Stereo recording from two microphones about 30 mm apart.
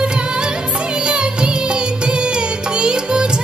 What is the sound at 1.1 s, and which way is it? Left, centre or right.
Music, right.